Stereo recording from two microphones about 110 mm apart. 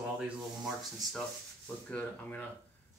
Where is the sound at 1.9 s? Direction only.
15° left (ahead or behind).